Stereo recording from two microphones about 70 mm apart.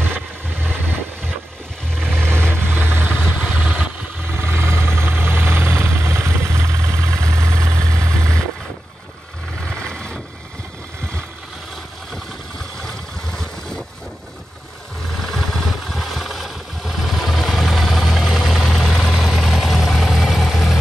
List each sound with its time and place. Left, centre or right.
0.1 s vehicle: right
2.0 s vehicle: right
9.8 s vehicle: centre
12.8 s vehicle: centre
15.3 s vehicle: centre